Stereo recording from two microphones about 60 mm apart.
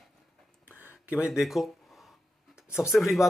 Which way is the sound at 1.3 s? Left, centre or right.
Centre.